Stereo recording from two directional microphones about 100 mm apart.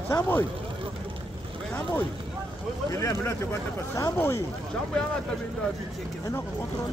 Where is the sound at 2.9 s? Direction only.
30° left (ahead or behind).